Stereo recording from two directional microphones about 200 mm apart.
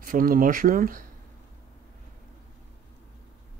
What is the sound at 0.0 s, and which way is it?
Speech, 45° right (ahead or behind).